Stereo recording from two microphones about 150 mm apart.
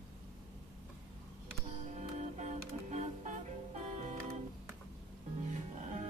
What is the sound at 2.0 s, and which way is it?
Music, 50° right (ahead or behind).